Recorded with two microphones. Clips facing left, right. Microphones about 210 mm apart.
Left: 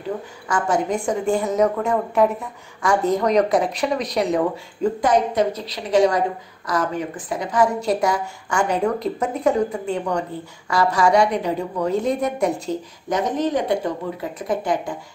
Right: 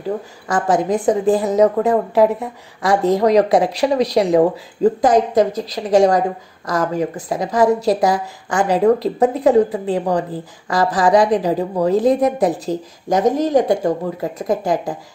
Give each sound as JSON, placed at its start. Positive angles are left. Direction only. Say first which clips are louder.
{"t": 0.5, "sound": "a woman's voice", "louder": "right 4 dB", "side_deg": -35}